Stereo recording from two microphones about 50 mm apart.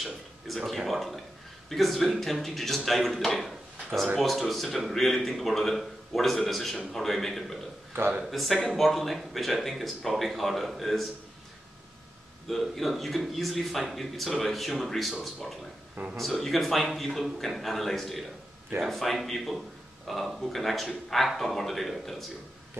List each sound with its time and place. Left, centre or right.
0.0 s a man's voice: centre
12.4 s a man's voice: centre